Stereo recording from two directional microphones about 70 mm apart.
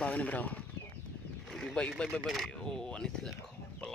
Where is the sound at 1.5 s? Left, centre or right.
Centre.